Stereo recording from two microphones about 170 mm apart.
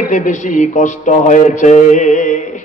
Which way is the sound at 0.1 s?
45° left (ahead or behind).